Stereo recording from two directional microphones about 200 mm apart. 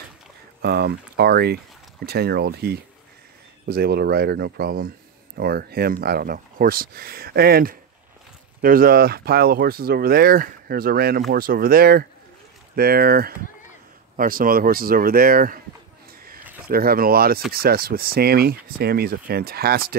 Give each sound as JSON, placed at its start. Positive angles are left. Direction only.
{"t": 0.6, "sound": "speech", "side_deg": -55}
{"t": 16.6, "sound": "speech", "side_deg": -50}